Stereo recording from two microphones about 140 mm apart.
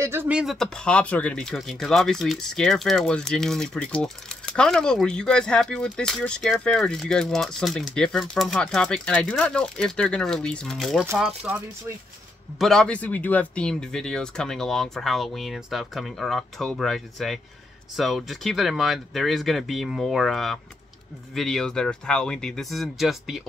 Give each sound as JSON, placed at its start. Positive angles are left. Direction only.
{"t": 0.0, "sound": "speech", "side_deg": -15}
{"t": 0.4, "sound": "speech", "side_deg": 0}
{"t": 12.5, "sound": "speech", "side_deg": 5}